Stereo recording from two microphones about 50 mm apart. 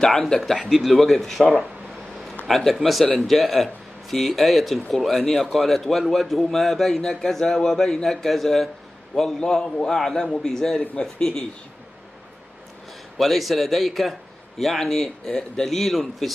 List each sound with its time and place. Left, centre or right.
0.0 s speech: centre
0.5 s speech: centre
9.4 s speech: centre
10.8 s a man's voice: left
13.2 s speech: centre